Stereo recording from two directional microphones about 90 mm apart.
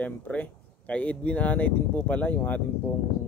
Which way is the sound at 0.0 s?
15° left (ahead or behind).